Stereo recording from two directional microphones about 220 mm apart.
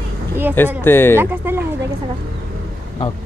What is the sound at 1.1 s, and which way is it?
Speech, 10° right (ahead or behind).